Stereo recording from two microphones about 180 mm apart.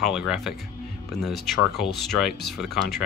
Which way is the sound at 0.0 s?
Centre (ahead or behind).